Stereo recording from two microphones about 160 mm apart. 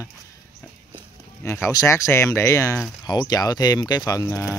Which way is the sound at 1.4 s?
15° left (ahead or behind).